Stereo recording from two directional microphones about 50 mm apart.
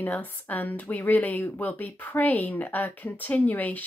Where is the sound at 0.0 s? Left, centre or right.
Left.